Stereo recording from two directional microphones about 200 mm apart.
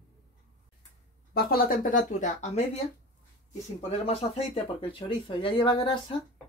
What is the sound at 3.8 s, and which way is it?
Speech, 30° left (ahead or behind).